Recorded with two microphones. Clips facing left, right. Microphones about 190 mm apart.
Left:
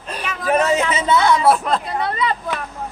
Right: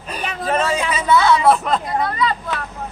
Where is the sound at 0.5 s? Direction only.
20° left (ahead or behind).